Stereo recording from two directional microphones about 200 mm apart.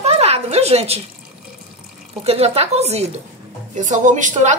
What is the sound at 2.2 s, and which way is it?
A woman's voice, 30° right (ahead or behind).